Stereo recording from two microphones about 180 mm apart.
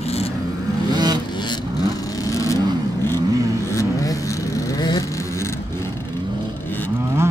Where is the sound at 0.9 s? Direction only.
25° right (ahead or behind).